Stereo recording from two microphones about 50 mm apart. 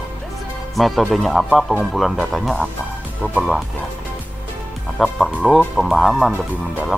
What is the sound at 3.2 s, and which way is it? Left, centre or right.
Speech, left.